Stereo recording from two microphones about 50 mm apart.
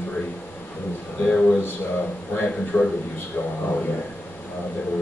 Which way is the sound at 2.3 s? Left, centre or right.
Left.